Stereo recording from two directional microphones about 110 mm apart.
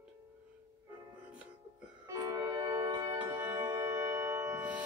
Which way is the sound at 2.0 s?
30° right (ahead or behind).